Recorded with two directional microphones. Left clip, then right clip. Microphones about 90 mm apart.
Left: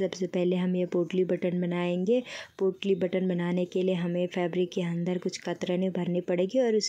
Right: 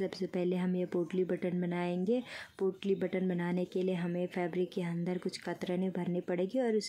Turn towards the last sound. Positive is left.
turn(degrees=30)  # may be behind; listen again after turning